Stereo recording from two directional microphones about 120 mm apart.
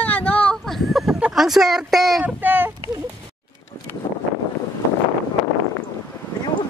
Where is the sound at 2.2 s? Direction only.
15° right (ahead or behind).